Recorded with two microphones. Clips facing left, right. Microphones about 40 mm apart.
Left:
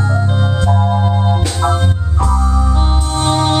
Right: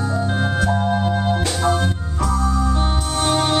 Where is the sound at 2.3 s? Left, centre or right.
Left.